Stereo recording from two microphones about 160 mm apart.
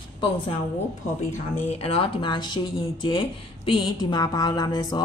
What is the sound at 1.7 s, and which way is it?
A woman's voice, 40° left (ahead or behind).